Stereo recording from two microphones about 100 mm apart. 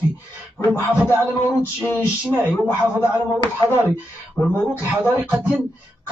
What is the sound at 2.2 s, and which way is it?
Speech, 20° right (ahead or behind).